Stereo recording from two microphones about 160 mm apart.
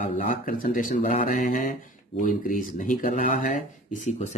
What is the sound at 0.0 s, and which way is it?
Speech, 50° left (ahead or behind).